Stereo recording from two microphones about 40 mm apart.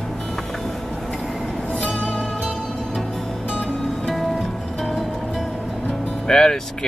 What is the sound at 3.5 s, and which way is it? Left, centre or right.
Music, right.